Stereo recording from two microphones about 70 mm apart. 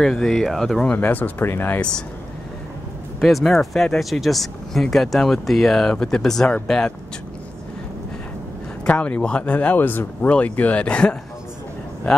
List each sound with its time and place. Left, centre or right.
0.0 s speech: centre
0.8 s speech: left
1.8 s speech: centre
3.2 s speech: centre
8.8 s speech: centre